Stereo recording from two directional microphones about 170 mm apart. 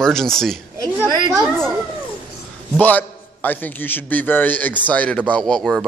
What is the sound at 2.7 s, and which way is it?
A man's voice, 10° left (ahead or behind).